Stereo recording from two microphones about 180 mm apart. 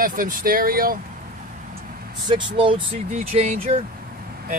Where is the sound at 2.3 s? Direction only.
30° right (ahead or behind).